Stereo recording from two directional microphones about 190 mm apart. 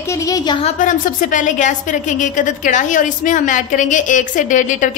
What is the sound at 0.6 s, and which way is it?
A woman's voice, 40° left (ahead or behind).